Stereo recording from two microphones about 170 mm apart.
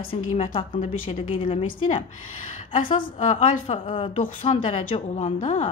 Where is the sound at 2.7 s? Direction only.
30° left (ahead or behind).